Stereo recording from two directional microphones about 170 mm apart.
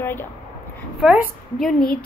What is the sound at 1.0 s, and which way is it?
Speech, 5° right (ahead or behind).